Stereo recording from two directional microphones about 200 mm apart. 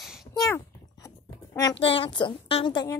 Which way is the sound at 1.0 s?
15° left (ahead or behind).